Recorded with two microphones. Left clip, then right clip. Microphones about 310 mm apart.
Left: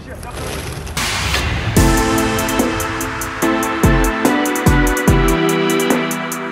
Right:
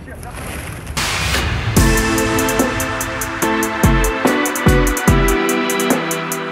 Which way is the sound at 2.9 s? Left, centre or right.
Centre.